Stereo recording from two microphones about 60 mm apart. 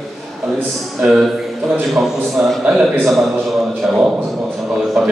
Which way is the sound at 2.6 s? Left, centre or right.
Centre.